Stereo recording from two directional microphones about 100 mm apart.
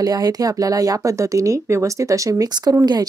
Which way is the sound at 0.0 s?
40° right (ahead or behind).